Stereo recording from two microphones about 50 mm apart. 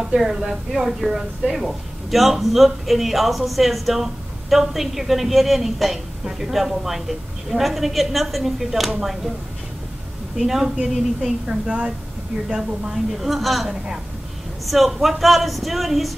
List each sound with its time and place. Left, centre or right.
0.0 s speech: centre
10.4 s speech: centre
11.4 s a woman's voice: right
13.2 s speech: centre
14.7 s speech: centre